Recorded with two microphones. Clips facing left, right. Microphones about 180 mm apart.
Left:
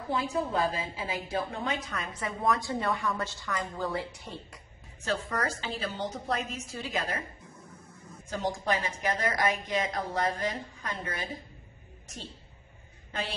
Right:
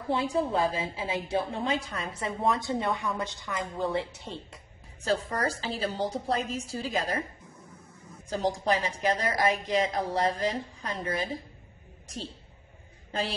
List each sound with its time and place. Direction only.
0.1 s a woman's voice: 30° right (ahead or behind)
8.3 s a woman's voice: 35° right (ahead or behind)